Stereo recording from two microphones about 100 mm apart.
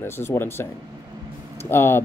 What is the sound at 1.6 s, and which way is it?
Speech, 25° left (ahead or behind).